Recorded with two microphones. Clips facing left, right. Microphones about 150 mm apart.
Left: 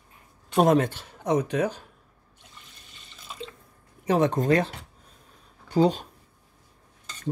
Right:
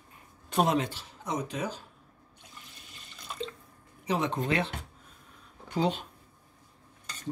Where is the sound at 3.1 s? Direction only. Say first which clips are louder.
Right 2 dB; 5° left (ahead or behind).